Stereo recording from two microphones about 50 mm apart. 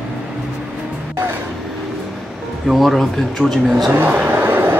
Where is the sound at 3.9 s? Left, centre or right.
Right.